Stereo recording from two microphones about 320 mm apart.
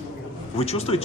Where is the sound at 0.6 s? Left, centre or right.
Centre.